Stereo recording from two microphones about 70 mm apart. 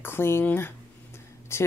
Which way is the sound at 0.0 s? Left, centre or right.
Left.